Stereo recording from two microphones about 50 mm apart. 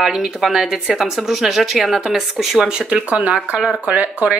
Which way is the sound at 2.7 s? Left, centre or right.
Right.